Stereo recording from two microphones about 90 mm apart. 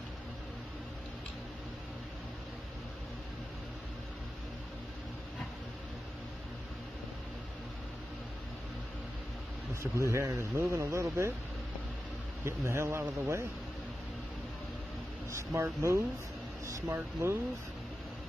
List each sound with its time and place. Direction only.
9.9 s speech: 35° right (ahead or behind)
12.4 s speech: 30° right (ahead or behind)
15.3 s speech: 30° right (ahead or behind)